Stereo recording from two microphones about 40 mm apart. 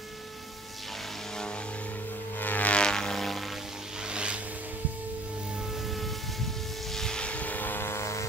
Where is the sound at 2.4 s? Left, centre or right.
Left.